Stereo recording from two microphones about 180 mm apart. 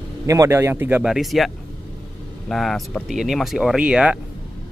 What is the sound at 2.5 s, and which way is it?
A man's voice, centre (ahead or behind).